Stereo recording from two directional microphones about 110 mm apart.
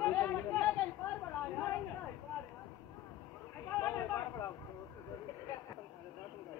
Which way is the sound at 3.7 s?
20° left (ahead or behind).